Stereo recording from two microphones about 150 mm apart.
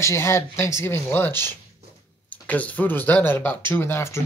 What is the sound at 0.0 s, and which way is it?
Speech, 20° left (ahead or behind).